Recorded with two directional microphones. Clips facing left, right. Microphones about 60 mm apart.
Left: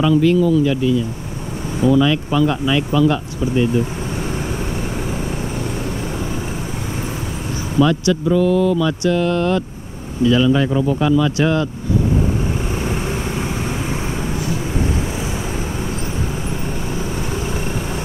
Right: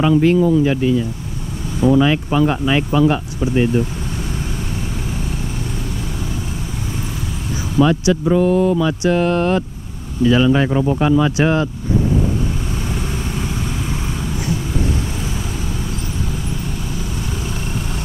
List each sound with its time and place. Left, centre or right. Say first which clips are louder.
0.0 s speech: right 1 dB; right
7.8 s speech: right 1 dB; right